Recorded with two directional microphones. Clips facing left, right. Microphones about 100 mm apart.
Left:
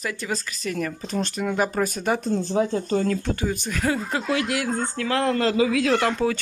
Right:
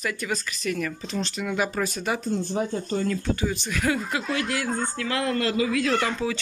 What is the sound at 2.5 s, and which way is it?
Speech, 90° left.